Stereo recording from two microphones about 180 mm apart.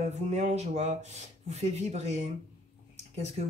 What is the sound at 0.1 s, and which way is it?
Speech, 40° right (ahead or behind).